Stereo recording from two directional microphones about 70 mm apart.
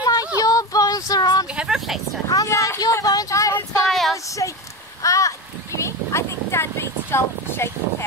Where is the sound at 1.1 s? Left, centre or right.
Left.